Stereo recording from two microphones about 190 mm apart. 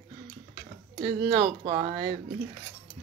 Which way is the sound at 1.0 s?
25° right (ahead or behind).